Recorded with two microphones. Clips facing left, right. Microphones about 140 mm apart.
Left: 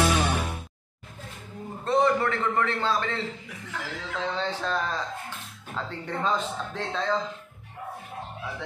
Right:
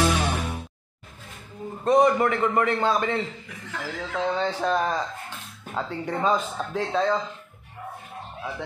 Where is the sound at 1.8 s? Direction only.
15° right (ahead or behind).